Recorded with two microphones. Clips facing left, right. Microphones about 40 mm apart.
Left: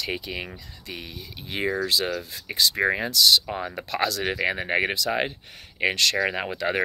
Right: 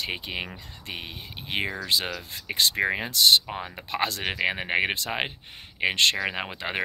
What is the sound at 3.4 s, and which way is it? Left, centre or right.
Speech, centre.